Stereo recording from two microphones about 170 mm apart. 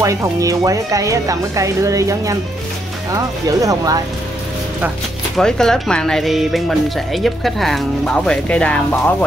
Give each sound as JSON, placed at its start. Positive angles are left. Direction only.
{"t": 0.0, "sound": "speech", "side_deg": -20}
{"t": 5.4, "sound": "speech", "side_deg": 5}